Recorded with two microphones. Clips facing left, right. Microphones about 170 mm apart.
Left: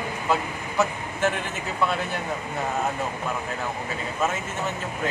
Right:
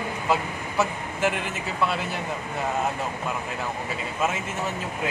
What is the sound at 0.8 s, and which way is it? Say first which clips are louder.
Speech: left 1 dB; 5° right (ahead or behind).